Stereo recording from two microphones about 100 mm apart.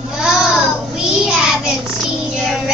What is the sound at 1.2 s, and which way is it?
Child singing, 5° right (ahead or behind).